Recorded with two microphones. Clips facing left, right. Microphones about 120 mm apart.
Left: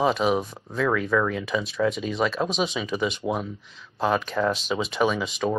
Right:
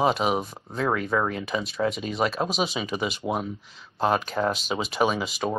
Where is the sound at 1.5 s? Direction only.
Centre (ahead or behind).